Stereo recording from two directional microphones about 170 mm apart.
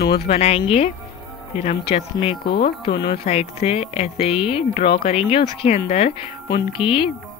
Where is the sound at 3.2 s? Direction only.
40° left (ahead or behind).